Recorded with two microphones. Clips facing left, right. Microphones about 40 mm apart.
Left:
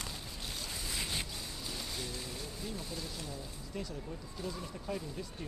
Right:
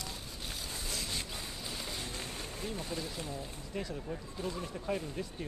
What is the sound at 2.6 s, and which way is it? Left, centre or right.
Speech, right.